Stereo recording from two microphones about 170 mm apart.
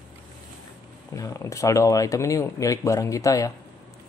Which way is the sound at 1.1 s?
20° left (ahead or behind).